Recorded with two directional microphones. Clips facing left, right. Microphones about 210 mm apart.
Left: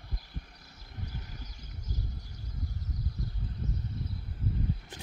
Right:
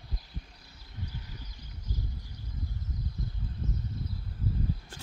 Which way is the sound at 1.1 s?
45° left (ahead or behind).